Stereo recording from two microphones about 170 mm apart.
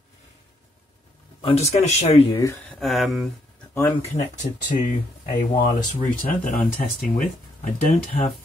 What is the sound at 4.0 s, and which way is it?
Speech, 50° left (ahead or behind).